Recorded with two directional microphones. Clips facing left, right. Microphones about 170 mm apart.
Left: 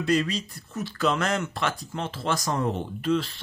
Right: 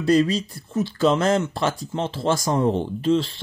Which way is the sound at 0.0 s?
35° right (ahead or behind).